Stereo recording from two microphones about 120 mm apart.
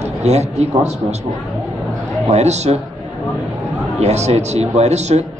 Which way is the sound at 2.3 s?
65° right (ahead or behind).